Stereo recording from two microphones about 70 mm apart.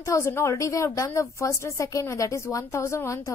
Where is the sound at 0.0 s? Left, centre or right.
Left.